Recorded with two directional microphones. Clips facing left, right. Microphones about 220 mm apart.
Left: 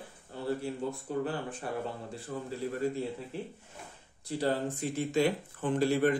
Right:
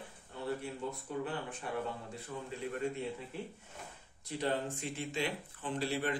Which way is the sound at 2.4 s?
35° left (ahead or behind).